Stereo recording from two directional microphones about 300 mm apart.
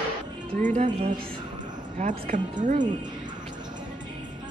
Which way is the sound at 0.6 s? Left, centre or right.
Right.